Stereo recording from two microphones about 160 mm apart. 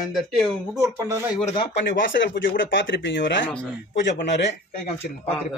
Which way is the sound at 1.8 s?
90° left.